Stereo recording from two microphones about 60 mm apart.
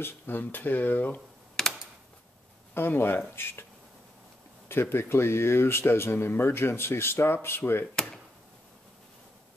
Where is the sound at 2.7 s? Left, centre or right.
Left.